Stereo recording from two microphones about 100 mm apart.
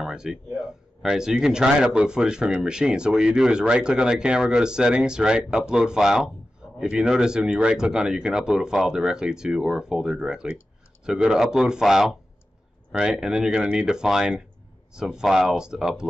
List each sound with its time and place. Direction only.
0.0 s a man's voice: 5° right (ahead or behind)